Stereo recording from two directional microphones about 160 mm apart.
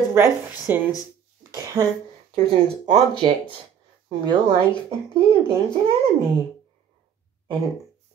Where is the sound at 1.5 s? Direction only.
20° right (ahead or behind).